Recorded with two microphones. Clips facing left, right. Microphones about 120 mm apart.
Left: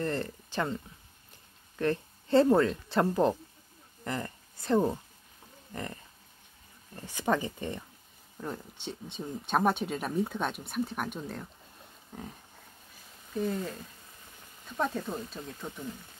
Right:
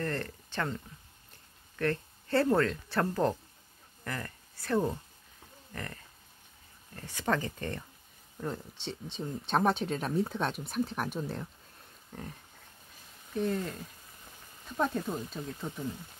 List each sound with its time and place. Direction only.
0.0 s speech: 15° left (ahead or behind)
1.8 s speech: 20° left (ahead or behind)
7.0 s speech: 15° left (ahead or behind)
8.4 s speech: centre (ahead or behind)
12.1 s speech: 10° left (ahead or behind)
13.3 s speech: centre (ahead or behind)
14.8 s speech: centre (ahead or behind)